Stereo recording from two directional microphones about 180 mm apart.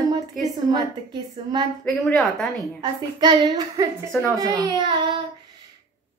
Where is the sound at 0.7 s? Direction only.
25° right (ahead or behind).